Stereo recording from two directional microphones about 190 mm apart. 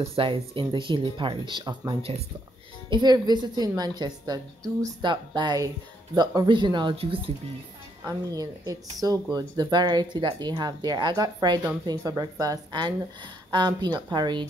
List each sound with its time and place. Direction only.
0.0 s speech: 30° right (ahead or behind)
8.0 s speech: 20° right (ahead or behind)